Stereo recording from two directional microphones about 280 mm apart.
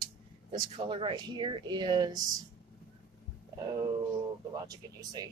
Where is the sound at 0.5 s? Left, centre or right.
Centre.